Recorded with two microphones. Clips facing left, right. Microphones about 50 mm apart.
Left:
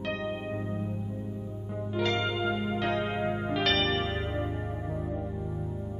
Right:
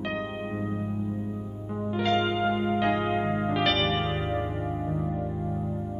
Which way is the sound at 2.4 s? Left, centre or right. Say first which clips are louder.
Right 4 dB; right.